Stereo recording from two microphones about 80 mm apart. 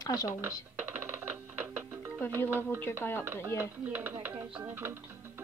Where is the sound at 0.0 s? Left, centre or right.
Left.